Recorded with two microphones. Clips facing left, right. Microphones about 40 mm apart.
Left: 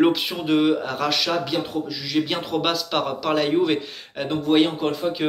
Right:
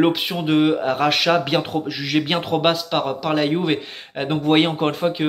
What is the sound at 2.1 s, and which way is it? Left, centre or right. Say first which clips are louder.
Speech: right 3 dB; right.